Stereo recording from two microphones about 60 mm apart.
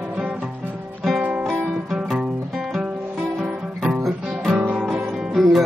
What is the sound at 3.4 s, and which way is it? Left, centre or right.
Guitar, centre.